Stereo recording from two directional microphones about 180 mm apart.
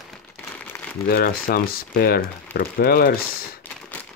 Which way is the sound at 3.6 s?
5° left (ahead or behind).